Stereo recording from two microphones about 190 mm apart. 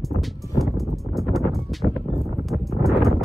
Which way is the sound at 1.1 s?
Centre (ahead or behind).